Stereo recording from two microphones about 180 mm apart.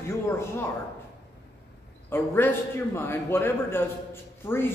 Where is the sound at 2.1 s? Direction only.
10° left (ahead or behind).